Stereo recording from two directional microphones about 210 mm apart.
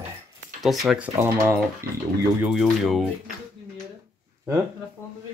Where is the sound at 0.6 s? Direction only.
Centre (ahead or behind).